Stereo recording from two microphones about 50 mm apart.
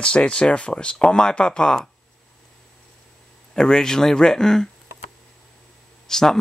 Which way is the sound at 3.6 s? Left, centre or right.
Centre.